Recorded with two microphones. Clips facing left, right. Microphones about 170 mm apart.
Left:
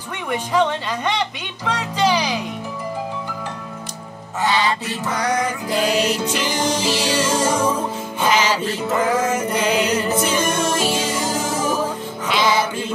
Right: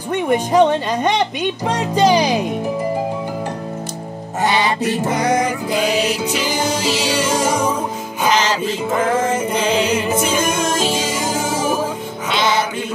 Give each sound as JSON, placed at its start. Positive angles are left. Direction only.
{"t": 0.1, "sound": "speech", "side_deg": -45}
{"t": 1.7, "sound": "speech", "side_deg": -45}
{"t": 4.5, "sound": "music", "side_deg": -15}
{"t": 5.8, "sound": "music", "side_deg": 0}
{"t": 8.3, "sound": "music", "side_deg": 10}
{"t": 8.6, "sound": "music", "side_deg": -15}
{"t": 12.3, "sound": "music", "side_deg": 0}